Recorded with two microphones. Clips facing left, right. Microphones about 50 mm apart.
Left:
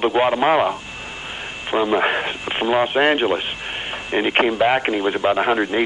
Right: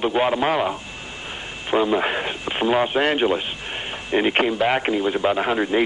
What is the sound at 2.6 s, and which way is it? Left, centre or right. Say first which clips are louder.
Speech: left 2 dB; centre.